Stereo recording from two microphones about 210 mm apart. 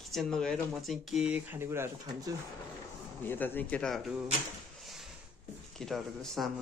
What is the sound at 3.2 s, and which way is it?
Speech, 10° left (ahead or behind).